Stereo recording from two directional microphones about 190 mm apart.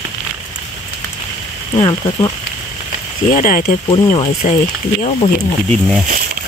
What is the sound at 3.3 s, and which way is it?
Speech, 45° left (ahead or behind).